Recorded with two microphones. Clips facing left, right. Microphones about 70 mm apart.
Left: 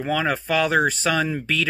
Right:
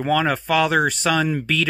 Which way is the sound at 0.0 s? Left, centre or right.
Centre.